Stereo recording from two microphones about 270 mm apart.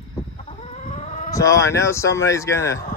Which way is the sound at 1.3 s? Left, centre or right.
Centre.